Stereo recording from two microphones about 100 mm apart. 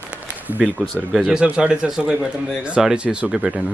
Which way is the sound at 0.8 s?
15° right (ahead or behind).